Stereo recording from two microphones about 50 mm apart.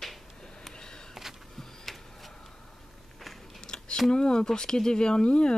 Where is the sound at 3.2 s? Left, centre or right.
Centre.